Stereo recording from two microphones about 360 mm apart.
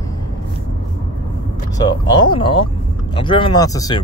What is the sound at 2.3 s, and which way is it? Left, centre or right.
Speech, centre.